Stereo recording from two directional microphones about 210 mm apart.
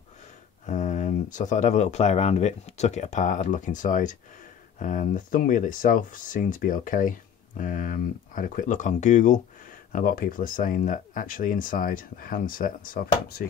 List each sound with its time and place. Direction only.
0.7 s speech: 35° left (ahead or behind)